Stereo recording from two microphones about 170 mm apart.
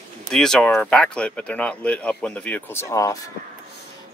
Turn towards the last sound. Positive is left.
turn(degrees=20)  # may be behind; listen again after turning